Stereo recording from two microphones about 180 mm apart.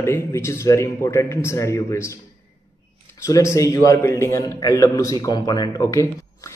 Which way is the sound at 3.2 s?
15° left (ahead or behind).